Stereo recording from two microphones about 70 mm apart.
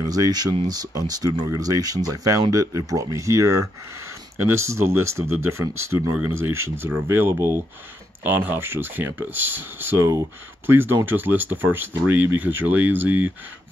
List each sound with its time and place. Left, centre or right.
0.0 s speech: right
4.4 s speech: right